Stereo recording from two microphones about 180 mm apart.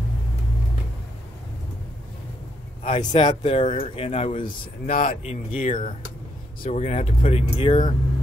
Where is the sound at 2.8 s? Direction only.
30° left (ahead or behind).